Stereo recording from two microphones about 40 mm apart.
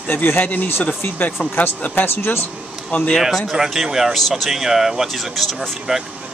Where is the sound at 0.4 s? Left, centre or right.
Left.